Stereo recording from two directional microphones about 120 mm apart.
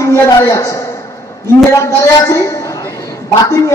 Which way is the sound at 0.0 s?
25° left (ahead or behind).